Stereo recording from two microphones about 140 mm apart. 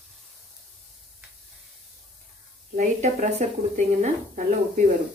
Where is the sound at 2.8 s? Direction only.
55° right (ahead or behind).